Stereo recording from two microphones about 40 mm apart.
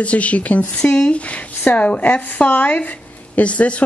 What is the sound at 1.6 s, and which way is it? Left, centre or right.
A woman's voice, left.